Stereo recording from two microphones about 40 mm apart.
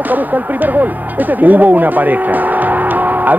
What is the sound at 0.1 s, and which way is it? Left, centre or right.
Speech, right.